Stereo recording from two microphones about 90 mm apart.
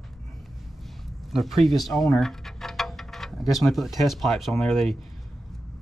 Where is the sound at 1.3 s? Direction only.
Centre (ahead or behind).